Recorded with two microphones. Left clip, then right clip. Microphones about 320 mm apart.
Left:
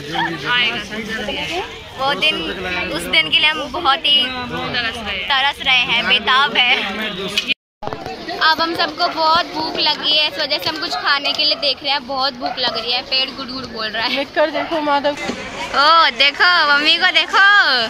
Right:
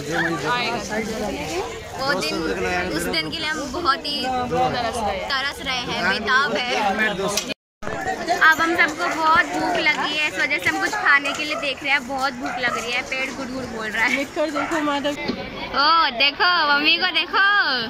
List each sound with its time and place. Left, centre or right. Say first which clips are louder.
0.5 s speech: left 6 dB; centre
2.0 s a woman's voice: left 6 dB; centre
5.3 s a woman's voice: left 9 dB; centre
8.4 s speech: left 1 dB; centre
14.3 s a woman's voice: left 5 dB; left
15.7 s a woman's voice: left 5 dB; centre